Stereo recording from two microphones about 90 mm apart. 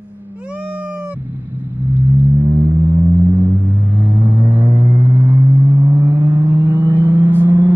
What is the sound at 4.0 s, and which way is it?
Vehicle, 20° right (ahead or behind).